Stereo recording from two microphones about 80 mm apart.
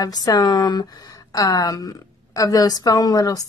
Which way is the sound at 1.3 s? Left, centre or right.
Left.